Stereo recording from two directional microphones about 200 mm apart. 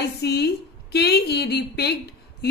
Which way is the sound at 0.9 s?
55° left (ahead or behind).